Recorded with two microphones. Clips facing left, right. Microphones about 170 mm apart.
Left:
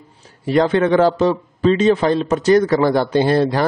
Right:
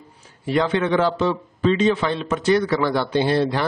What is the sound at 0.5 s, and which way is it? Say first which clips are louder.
A man's voice: left 5 dB; 40° left (ahead or behind).